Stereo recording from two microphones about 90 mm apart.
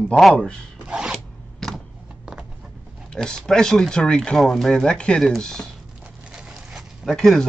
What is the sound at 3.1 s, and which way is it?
A man's voice, 5° left (ahead or behind).